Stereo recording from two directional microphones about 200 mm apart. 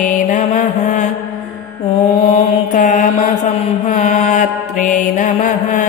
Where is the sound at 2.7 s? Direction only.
40° left (ahead or behind).